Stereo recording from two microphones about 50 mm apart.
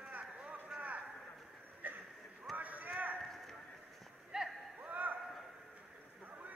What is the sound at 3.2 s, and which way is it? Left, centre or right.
Clip-clop, centre.